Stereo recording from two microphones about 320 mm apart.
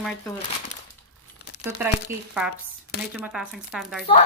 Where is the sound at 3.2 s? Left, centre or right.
Centre.